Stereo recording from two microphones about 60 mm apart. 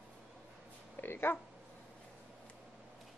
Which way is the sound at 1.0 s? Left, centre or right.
Left.